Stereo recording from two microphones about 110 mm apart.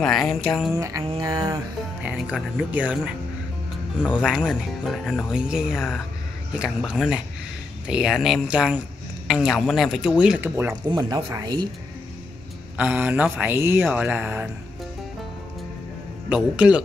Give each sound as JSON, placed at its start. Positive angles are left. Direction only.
{"t": 0.0, "sound": "speech", "side_deg": 0}
{"t": 0.7, "sound": "mantra", "side_deg": -30}
{"t": 1.2, "sound": "speech", "side_deg": -35}
{"t": 2.0, "sound": "speech", "side_deg": -10}
{"t": 10.8, "sound": "mantra", "side_deg": -30}
{"t": 11.3, "sound": "speech", "side_deg": -40}
{"t": 12.7, "sound": "speech", "side_deg": -10}
{"t": 16.3, "sound": "speech", "side_deg": -10}